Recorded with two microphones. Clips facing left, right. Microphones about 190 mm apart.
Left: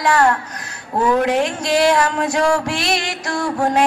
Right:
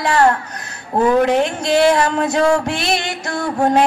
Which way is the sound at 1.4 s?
25° right (ahead or behind).